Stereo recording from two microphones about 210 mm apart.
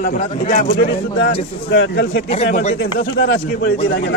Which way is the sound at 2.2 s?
30° left (ahead or behind).